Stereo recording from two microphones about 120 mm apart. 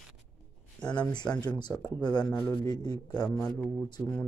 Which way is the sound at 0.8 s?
35° left (ahead or behind).